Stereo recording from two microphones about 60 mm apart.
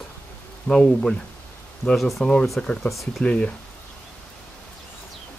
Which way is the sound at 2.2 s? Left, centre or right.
Centre.